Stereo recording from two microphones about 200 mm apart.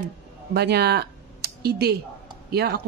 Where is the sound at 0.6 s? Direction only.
55° right (ahead or behind).